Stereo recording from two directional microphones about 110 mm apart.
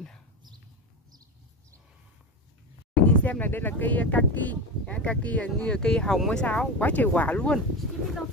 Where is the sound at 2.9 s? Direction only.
15° left (ahead or behind).